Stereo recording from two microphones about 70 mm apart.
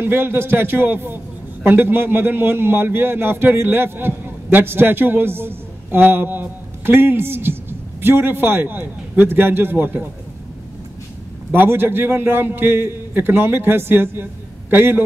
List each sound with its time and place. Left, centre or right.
0.0 s a man's voice: right
11.5 s a man's voice: right